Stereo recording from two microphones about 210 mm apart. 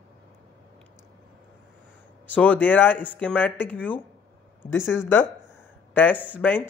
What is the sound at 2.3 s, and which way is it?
Speech, 5° left (ahead or behind).